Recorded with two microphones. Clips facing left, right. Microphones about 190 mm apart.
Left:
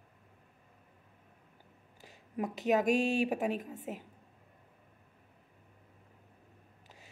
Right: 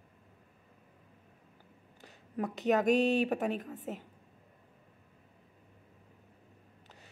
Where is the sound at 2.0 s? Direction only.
5° left (ahead or behind).